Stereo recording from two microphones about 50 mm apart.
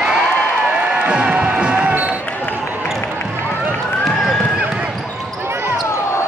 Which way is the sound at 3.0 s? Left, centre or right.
Left.